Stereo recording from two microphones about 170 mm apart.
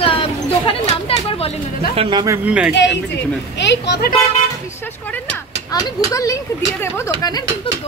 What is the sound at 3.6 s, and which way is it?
Speech, 85° left.